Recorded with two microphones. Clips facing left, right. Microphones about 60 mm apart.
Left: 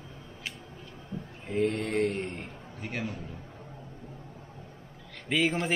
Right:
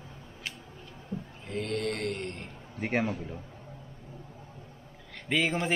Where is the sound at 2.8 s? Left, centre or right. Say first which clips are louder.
Right 6 dB; right.